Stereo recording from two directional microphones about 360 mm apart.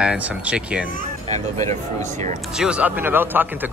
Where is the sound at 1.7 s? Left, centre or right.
Centre.